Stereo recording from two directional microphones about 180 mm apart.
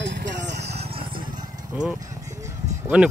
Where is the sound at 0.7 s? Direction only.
30° right (ahead or behind).